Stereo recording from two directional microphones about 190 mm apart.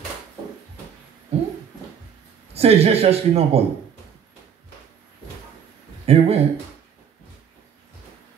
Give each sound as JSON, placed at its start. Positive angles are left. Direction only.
{"t": 1.3, "sound": "a sound", "side_deg": -35}
{"t": 2.5, "sound": "a man's voice", "side_deg": -30}
{"t": 6.0, "sound": "a man's voice", "side_deg": -35}